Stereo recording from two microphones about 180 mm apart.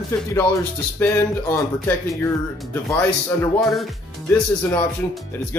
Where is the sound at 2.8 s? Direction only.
15° left (ahead or behind).